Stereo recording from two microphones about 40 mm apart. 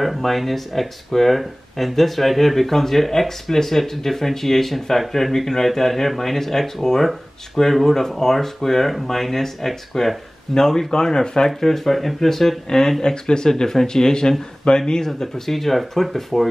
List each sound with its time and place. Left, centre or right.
0.0 s speech: centre